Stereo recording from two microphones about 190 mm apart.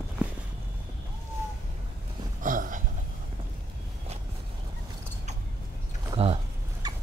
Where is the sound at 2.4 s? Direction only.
45° right (ahead or behind).